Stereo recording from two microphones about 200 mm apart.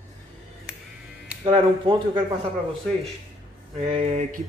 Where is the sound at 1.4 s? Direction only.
25° right (ahead or behind).